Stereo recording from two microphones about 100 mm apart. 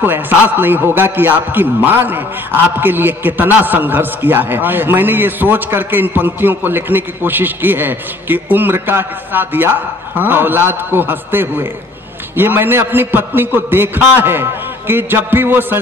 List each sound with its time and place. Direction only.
0.0 s a man's voice: 20° right (ahead or behind)